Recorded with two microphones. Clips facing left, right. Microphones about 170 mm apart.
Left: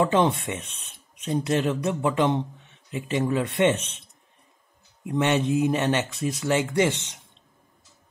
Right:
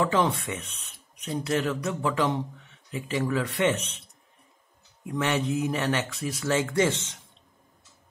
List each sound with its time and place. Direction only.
0.0 s speech: 25° left (ahead or behind)
5.0 s speech: 25° left (ahead or behind)